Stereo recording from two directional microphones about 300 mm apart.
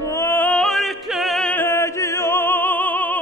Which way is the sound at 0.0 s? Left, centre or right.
Centre.